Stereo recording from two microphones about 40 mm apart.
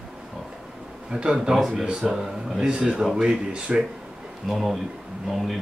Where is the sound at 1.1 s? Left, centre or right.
Centre.